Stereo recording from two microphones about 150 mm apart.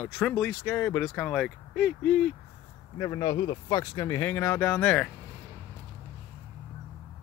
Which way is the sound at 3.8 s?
20° left (ahead or behind).